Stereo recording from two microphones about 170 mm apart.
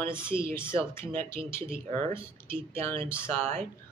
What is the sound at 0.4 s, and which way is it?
A woman's voice, 15° left (ahead or behind).